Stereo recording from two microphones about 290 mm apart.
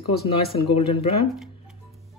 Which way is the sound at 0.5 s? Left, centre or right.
Left.